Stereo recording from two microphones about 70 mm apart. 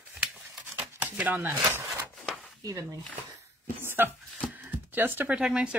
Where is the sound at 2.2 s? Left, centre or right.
Centre.